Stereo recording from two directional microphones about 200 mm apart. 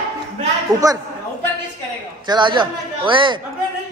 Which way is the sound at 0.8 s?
15° right (ahead or behind).